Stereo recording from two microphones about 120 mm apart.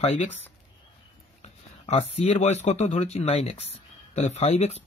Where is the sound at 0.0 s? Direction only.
60° left (ahead or behind).